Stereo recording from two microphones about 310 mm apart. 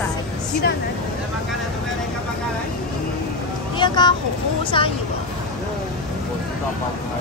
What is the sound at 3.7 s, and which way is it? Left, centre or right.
Speech, centre.